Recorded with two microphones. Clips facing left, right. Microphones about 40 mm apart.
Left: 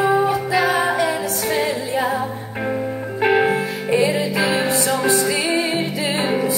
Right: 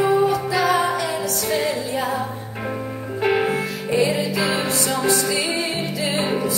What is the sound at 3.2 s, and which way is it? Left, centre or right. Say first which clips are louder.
Music: left 3 dB; centre.